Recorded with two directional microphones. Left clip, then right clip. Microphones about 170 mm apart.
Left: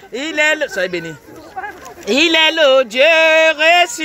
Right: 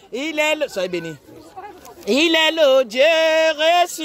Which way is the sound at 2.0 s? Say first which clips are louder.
Left 4 dB; 35° right (ahead or behind).